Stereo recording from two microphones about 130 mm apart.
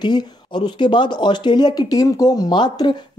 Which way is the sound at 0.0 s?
35° left (ahead or behind).